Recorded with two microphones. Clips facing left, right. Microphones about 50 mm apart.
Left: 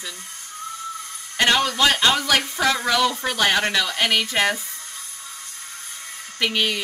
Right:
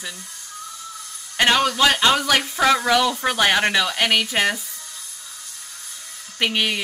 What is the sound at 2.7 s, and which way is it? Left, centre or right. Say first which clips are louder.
Speech: right 2 dB; centre.